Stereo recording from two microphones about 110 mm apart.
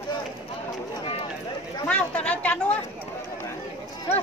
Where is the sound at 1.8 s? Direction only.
10° left (ahead or behind).